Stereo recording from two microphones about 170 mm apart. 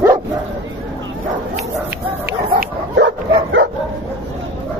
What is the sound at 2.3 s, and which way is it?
Chicken, 80° right.